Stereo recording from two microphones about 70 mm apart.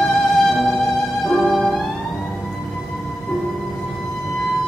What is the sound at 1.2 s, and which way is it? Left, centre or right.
Music, centre.